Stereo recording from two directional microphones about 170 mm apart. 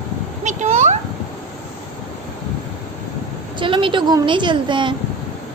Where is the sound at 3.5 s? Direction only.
30° right (ahead or behind).